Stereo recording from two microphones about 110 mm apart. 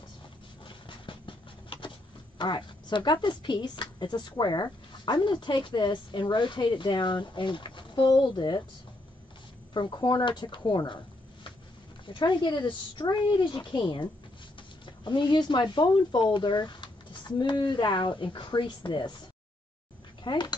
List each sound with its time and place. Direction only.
0.7 s a sound: 50° left (ahead or behind)
2.3 s a woman's voice: 45° left (ahead or behind)
9.8 s a woman's voice: 45° left (ahead or behind)
12.1 s a woman's voice: 45° left (ahead or behind)
20.2 s a woman's voice: 45° left (ahead or behind)